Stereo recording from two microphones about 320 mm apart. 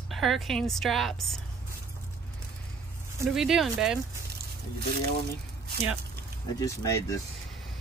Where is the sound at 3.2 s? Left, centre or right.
Centre.